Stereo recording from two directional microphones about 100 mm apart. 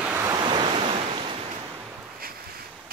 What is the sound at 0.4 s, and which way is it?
Waves, 50° right (ahead or behind).